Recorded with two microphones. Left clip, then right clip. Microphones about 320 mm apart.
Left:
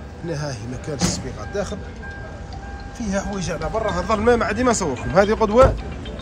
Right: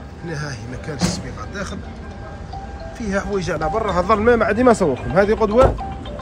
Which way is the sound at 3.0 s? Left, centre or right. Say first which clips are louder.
Right 4 dB; centre.